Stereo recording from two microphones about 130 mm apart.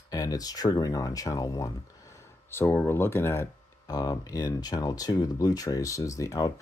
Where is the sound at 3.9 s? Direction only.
30° left (ahead or behind).